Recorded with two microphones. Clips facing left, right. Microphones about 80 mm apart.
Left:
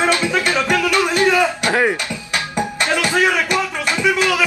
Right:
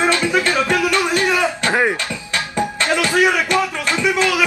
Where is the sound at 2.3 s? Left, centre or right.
Centre.